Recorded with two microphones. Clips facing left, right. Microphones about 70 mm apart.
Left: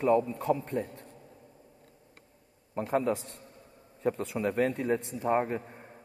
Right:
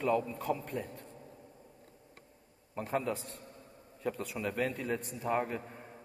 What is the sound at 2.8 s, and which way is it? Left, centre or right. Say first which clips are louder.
A man's voice: left 6 dB; left.